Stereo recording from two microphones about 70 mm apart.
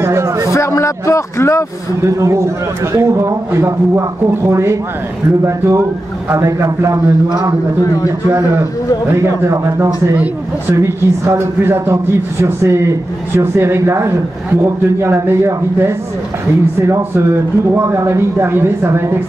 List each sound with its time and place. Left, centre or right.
0.0 s a sound: right
0.5 s speech: left
2.0 s a man's voice: right
8.3 s a man's voice: right